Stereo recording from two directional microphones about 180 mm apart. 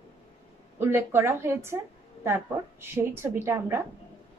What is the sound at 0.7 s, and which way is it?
A woman's voice, 15° right (ahead or behind).